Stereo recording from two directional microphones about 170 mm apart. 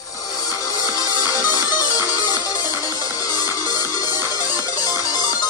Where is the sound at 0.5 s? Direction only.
20° left (ahead or behind).